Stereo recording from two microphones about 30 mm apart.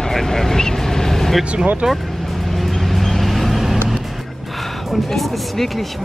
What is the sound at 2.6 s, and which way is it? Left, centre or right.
Vehicle, centre.